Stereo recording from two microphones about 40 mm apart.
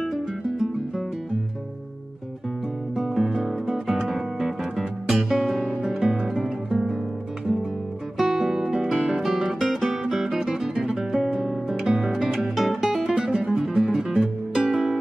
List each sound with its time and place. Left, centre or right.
0.1 s music: centre
3.0 s music: centre
8.2 s music: centre
13.1 s music: right
13.5 s music: centre